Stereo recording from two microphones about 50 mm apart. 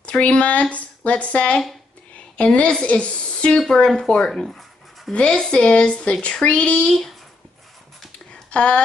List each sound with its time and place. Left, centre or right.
0.2 s speech: left
3.6 s speech: centre
5.1 s speech: centre
6.9 s speech: centre
8.5 s speech: left